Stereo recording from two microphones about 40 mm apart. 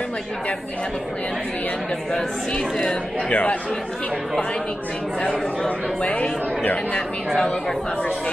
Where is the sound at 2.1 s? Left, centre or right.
Centre.